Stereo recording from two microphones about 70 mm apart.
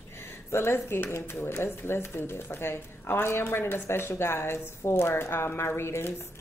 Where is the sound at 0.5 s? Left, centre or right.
Left.